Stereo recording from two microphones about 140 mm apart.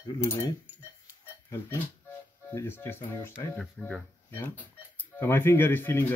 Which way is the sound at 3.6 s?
Centre (ahead or behind).